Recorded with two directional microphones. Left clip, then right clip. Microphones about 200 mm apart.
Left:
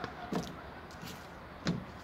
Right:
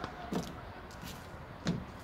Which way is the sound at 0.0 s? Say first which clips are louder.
Left 1 dB; 50° right (ahead or behind).